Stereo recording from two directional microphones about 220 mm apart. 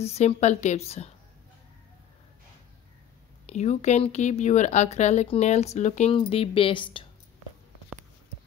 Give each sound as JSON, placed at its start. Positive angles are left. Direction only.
{"t": 0.0, "sound": "a woman's voice", "side_deg": 30}
{"t": 3.5, "sound": "speech", "side_deg": 30}